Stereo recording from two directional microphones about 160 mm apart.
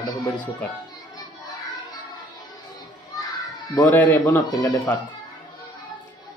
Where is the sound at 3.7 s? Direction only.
10° left (ahead or behind).